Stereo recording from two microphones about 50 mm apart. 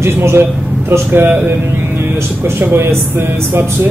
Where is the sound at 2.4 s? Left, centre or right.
Right.